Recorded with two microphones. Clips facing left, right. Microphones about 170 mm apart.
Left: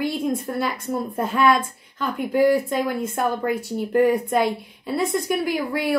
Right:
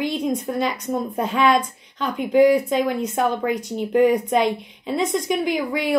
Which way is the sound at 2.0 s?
20° right (ahead or behind).